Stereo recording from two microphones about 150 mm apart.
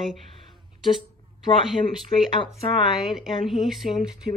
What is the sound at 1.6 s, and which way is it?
Speech, centre (ahead or behind).